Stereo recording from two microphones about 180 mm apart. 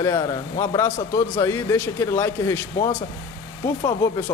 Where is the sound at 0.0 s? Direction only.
20° left (ahead or behind).